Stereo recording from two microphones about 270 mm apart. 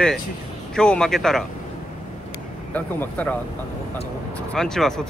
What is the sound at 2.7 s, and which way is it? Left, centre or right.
Speech, centre.